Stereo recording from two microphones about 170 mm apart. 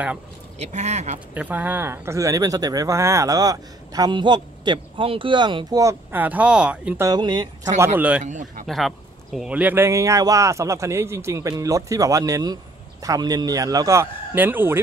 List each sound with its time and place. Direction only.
0.6 s speech: 40° right (ahead or behind)
1.3 s speech: 10° right (ahead or behind)
7.1 s speech: 25° right (ahead or behind)
7.8 s a man's voice: 10° right (ahead or behind)
8.2 s speech: 45° right (ahead or behind)
8.6 s a man's voice: centre (ahead or behind)